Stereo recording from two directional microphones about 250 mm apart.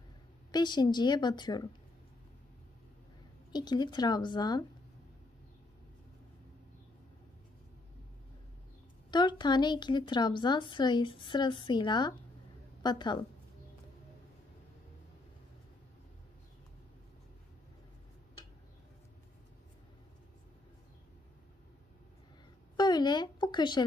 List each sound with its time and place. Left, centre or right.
0.5 s a woman's voice: centre
3.5 s a woman's voice: centre
9.1 s a woman's voice: centre
22.8 s speech: centre